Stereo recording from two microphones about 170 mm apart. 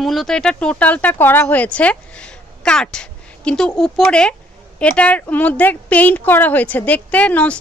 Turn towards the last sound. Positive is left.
turn(degrees=10)  # may be behind; listen again after turning